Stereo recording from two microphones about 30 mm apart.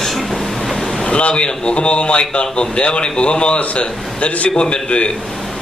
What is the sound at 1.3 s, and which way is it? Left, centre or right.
A man's voice, left.